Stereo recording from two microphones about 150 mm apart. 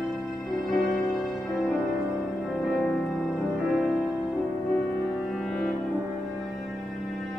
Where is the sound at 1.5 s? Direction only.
Centre (ahead or behind).